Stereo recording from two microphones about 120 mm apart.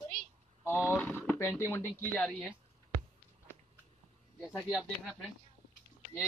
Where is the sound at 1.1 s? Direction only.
20° left (ahead or behind).